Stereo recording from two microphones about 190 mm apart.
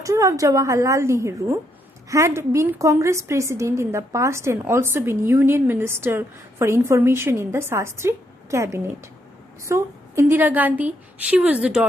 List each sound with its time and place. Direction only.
0.0 s a woman's voice: 15° right (ahead or behind)